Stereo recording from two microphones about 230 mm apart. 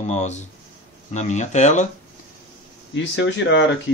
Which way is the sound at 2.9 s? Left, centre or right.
Left.